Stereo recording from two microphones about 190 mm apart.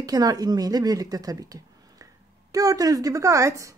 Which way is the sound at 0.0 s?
20° right (ahead or behind).